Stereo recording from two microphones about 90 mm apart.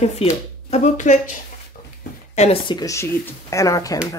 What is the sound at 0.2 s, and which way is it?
Speech, 90° left.